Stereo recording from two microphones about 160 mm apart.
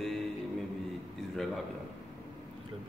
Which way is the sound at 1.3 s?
Centre (ahead or behind).